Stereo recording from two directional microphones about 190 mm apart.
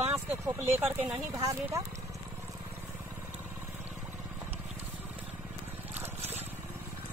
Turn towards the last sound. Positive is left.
turn(degrees=-10)  # may be behind; listen again after turning